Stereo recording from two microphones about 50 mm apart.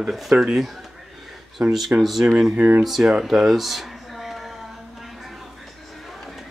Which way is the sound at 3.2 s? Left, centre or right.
Centre.